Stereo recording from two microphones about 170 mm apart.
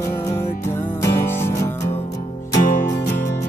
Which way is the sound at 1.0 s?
15° left (ahead or behind).